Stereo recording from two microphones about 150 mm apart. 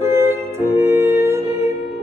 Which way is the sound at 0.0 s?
15° right (ahead or behind).